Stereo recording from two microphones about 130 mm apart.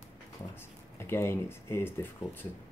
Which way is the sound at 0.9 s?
20° left (ahead or behind).